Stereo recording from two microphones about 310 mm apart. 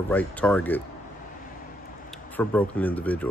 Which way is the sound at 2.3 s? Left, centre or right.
Centre.